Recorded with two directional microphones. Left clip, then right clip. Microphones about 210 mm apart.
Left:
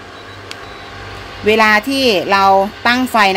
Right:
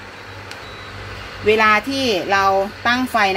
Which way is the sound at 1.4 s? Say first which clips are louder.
Left 3 dB; 45° left (ahead or behind).